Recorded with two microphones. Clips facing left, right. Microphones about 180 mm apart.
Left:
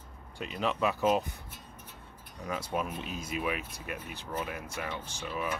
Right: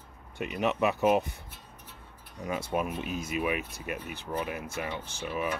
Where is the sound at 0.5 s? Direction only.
15° right (ahead or behind).